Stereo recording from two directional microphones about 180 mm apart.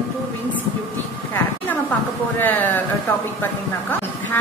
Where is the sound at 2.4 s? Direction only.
10° left (ahead or behind).